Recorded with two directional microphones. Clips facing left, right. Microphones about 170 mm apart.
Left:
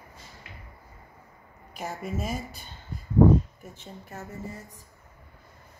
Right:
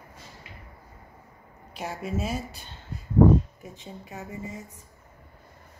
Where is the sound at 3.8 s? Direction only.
Centre (ahead or behind).